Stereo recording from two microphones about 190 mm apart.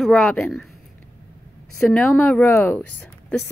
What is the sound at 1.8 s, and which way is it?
Speech, centre (ahead or behind).